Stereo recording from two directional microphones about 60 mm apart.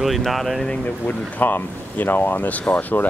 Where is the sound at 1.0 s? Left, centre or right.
Left.